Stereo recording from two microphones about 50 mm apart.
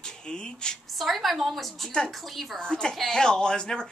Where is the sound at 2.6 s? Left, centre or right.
Centre.